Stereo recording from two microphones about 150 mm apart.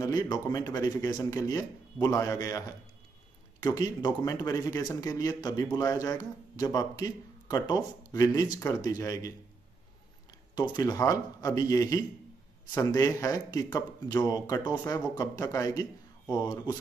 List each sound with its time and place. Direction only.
0.0 s a man's voice: 25° left (ahead or behind)
3.6 s a man's voice: 25° left (ahead or behind)
10.5 s a man's voice: 25° left (ahead or behind)